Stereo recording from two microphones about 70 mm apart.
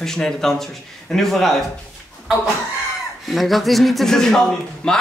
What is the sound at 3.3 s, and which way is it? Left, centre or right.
Speech, centre.